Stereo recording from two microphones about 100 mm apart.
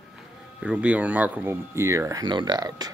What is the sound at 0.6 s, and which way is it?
Speech, 10° right (ahead or behind).